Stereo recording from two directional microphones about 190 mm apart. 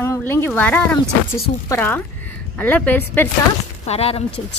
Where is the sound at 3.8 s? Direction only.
30° left (ahead or behind).